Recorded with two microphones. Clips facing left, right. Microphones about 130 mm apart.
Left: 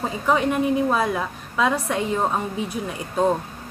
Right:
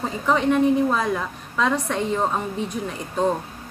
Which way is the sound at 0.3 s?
10° left (ahead or behind).